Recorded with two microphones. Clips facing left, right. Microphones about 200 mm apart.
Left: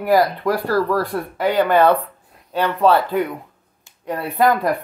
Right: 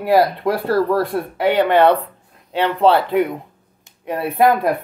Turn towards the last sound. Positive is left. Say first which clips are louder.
# right 2 dB
turn(degrees=-25)  # may be behind; listen again after turning